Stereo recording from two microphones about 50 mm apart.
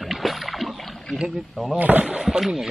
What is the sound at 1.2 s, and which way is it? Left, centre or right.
Speech, centre.